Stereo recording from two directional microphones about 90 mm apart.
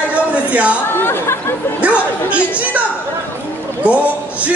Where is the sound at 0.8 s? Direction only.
25° left (ahead or behind).